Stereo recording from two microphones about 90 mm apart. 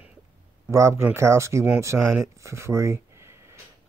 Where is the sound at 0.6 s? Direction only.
35° right (ahead or behind).